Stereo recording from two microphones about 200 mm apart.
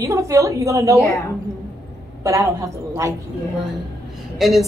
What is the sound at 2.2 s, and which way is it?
Speech, 15° right (ahead or behind).